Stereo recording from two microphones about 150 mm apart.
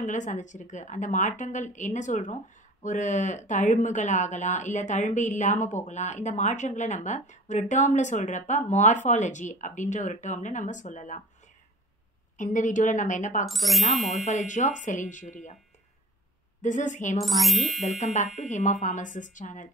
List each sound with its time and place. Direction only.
0.0 s a woman's voice: 55° left (ahead or behind)
12.4 s a woman's voice: 60° left (ahead or behind)
13.5 s speech: centre (ahead or behind)
14.1 s a woman's voice: 55° left (ahead or behind)
16.6 s a woman's voice: 55° left (ahead or behind)
17.2 s speech: centre (ahead or behind)
17.7 s a woman's voice: 55° left (ahead or behind)